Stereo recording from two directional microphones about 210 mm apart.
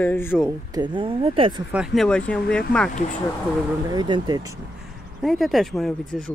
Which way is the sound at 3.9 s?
20° right (ahead or behind).